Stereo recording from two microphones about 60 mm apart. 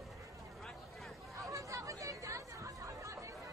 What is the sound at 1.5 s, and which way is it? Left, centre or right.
Chatter, right.